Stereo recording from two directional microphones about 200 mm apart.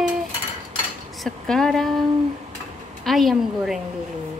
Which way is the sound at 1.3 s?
5° left (ahead or behind).